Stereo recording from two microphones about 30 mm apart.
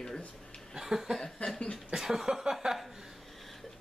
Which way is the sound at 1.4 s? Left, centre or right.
Left.